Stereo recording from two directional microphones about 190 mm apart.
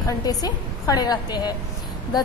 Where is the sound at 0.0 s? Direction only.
20° left (ahead or behind).